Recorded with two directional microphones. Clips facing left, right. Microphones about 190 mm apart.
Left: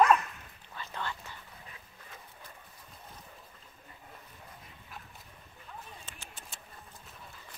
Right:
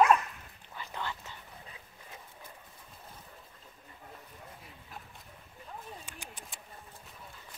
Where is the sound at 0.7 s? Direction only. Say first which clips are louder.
Even; 15° right (ahead or behind).